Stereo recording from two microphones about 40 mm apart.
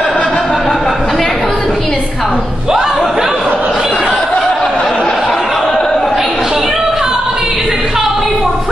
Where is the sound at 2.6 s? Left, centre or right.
Centre.